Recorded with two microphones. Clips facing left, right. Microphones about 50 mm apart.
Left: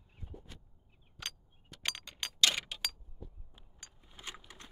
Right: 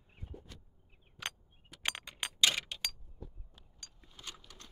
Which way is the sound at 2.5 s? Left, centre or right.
Centre.